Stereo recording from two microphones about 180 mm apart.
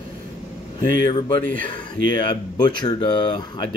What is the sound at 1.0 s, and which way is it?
Speech, 25° left (ahead or behind).